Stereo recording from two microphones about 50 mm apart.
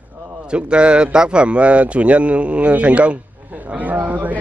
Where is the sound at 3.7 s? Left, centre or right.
Right.